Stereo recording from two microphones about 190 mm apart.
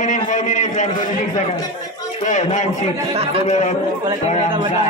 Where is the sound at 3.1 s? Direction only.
35° right (ahead or behind).